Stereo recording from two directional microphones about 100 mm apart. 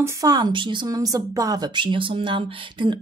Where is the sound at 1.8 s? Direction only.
60° right (ahead or behind).